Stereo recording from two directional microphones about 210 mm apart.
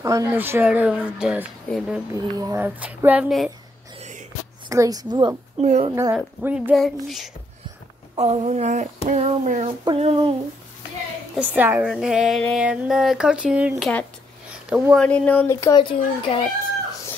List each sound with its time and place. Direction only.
0.0 s speech: 15° right (ahead or behind)
4.0 s music: 35° right (ahead or behind)
4.6 s speech: 15° right (ahead or behind)
5.6 s speech: 30° right (ahead or behind)
6.1 s speech: 5° right (ahead or behind)
8.2 s speech: 30° right (ahead or behind)
9.8 s a sound: 30° right (ahead or behind)
11.3 s speech: 10° right (ahead or behind)
15.0 s a child's voice: 5° left (ahead or behind); by 16.4 s 25° left (ahead or behind)